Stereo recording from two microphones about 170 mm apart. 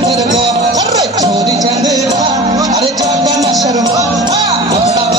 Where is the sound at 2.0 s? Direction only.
40° right (ahead or behind).